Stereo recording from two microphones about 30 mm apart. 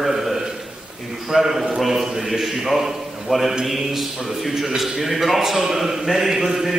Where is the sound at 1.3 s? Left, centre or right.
Centre.